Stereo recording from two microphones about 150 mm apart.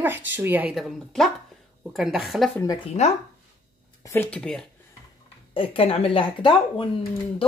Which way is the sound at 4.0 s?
20° left (ahead or behind).